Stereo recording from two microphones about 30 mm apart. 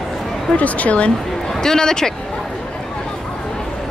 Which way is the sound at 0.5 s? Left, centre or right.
Left.